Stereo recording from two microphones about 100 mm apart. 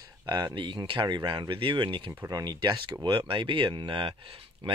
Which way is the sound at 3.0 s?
60° right (ahead or behind).